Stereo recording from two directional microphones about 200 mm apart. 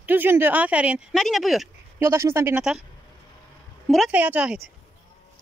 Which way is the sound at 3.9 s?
5° right (ahead or behind).